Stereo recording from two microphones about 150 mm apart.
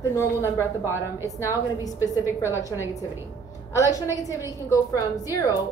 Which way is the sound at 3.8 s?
20° left (ahead or behind).